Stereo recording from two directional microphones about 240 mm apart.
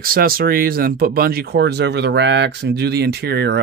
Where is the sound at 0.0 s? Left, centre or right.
Right.